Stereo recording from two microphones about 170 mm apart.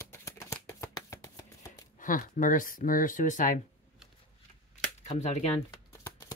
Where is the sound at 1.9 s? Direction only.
50° left (ahead or behind).